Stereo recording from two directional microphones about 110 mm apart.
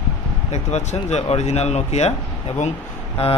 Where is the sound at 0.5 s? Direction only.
90° left.